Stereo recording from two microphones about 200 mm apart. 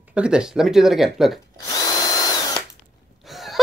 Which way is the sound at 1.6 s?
20° left (ahead or behind).